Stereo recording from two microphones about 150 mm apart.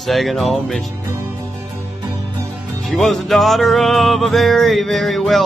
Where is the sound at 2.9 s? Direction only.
Centre (ahead or behind).